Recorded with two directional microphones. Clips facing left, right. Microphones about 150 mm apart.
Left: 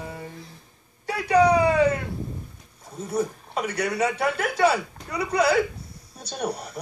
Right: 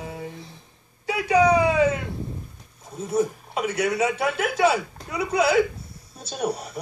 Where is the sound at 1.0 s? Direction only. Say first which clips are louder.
Even; 5° right (ahead or behind).